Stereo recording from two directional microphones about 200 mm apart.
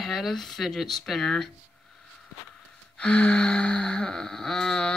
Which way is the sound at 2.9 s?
5° left (ahead or behind).